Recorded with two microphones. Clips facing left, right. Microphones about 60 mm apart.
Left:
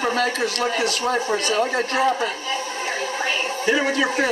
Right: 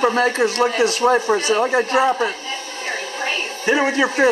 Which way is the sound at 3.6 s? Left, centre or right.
Right.